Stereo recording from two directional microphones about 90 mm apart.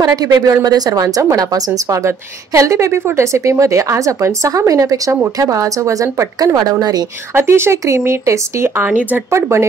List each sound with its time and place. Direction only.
0.0 s a woman's voice: 45° right (ahead or behind)
7.3 s speech: 30° right (ahead or behind)
9.3 s a woman's voice: 30° right (ahead or behind)